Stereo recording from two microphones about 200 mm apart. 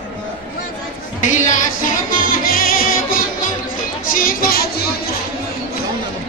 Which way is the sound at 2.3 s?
45° left (ahead or behind).